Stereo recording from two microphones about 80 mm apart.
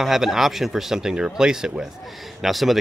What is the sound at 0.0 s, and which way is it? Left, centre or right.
Speech, centre.